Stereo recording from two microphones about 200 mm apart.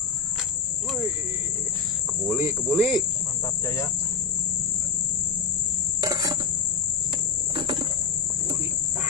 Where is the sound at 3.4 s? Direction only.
15° left (ahead or behind).